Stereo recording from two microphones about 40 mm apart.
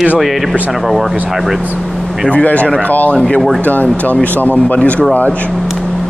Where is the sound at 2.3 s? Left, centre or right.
Left.